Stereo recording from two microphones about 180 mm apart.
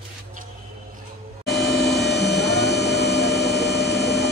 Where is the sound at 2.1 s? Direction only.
70° left (ahead or behind).